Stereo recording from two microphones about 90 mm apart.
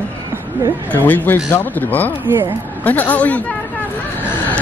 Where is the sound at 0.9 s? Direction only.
20° left (ahead or behind).